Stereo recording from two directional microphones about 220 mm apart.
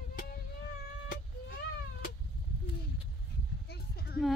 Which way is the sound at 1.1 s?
45° left (ahead or behind).